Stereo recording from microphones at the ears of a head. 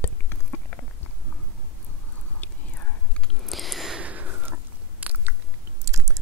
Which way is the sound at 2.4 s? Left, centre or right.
Left.